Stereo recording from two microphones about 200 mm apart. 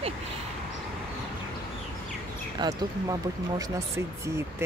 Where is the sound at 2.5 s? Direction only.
20° right (ahead or behind).